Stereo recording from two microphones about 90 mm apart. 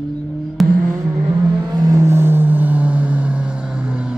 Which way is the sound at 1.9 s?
30° right (ahead or behind).